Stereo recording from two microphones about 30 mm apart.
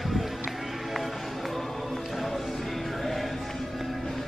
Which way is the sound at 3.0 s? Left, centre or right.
Centre.